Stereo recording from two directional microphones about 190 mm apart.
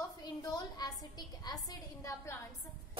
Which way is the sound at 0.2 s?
20° left (ahead or behind).